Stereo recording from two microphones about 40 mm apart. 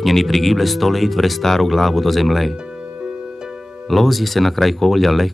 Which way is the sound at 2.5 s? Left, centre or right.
Right.